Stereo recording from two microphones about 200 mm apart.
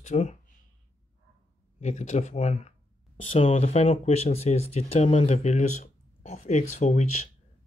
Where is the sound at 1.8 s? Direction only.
35° left (ahead or behind).